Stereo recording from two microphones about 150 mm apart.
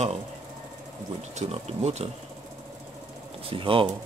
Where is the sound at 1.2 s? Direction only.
45° right (ahead or behind).